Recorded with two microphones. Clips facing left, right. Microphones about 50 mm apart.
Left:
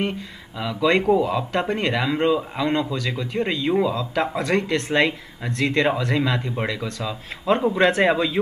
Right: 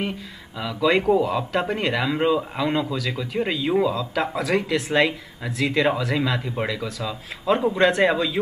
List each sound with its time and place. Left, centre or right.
0.6 s speech: centre